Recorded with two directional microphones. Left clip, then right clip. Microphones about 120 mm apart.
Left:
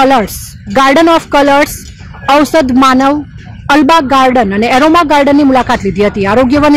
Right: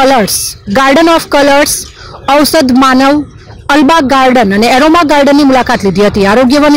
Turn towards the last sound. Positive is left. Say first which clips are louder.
# right 2 dB
turn(degrees=-25)  # may be behind; listen again after turning